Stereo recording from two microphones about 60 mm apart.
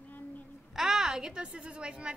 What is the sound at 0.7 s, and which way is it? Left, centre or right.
A woman's voice, centre.